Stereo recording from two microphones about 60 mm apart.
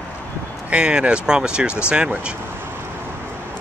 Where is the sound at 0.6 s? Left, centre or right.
Centre.